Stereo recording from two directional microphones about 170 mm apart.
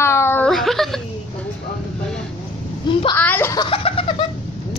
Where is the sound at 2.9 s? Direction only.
30° left (ahead or behind).